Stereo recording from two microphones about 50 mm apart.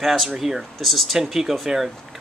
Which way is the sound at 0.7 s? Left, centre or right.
Centre.